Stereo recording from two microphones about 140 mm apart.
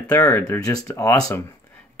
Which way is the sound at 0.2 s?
20° left (ahead or behind).